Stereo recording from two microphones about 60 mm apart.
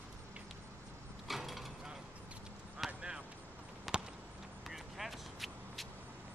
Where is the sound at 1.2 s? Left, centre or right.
Centre.